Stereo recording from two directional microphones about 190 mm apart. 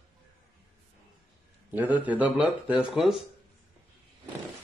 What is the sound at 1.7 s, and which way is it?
Speech, 10° right (ahead or behind).